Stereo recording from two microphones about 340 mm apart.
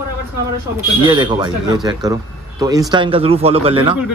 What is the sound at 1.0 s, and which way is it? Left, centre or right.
Speech, centre.